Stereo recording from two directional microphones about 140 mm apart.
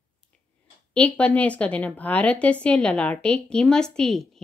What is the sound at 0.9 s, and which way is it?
A woman's voice, 10° left (ahead or behind).